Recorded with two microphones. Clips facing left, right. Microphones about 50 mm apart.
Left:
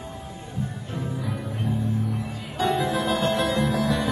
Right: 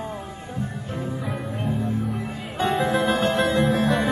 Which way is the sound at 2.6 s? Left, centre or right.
Right.